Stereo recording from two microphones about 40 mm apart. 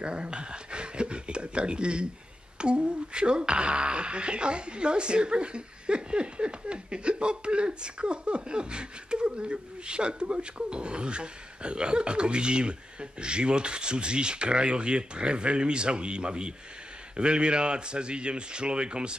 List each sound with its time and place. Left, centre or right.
0.0 s speech: right